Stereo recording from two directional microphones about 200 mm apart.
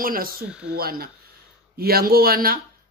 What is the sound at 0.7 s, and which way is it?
Speech, 50° right (ahead or behind).